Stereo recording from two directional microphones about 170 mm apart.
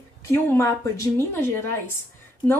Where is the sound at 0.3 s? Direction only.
15° left (ahead or behind).